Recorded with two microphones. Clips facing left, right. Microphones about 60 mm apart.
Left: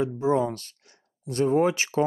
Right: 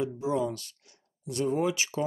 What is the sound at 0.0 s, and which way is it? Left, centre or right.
Speech, left.